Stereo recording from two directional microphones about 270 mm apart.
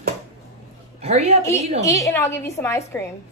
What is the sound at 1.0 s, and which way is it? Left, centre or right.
Speech, right.